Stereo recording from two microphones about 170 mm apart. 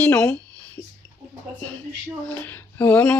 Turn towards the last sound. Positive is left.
turn(degrees=10)  # may be behind; listen again after turning